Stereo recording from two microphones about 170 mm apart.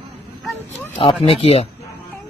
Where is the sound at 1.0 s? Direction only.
35° left (ahead or behind).